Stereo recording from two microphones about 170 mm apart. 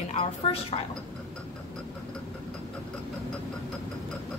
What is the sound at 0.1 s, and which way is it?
Speech, 35° left (ahead or behind).